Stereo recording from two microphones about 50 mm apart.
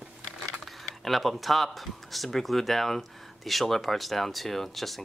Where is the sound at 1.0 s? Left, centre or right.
Centre.